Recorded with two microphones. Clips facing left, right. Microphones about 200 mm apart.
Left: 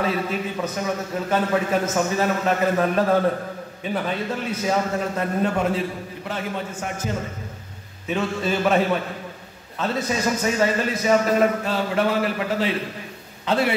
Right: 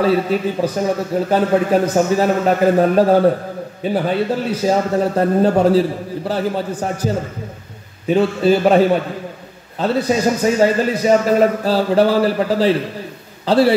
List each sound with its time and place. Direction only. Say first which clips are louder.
0.0 s a man's voice: right 8 dB; 30° right (ahead or behind)